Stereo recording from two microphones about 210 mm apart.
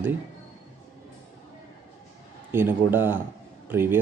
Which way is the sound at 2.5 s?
10° right (ahead or behind).